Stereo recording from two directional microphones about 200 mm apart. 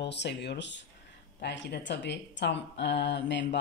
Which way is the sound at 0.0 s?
60° left (ahead or behind).